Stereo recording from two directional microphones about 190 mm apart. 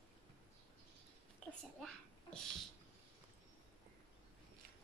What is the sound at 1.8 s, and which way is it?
Speech, centre (ahead or behind).